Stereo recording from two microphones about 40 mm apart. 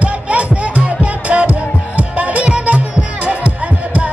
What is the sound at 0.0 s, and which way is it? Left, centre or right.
Music, right.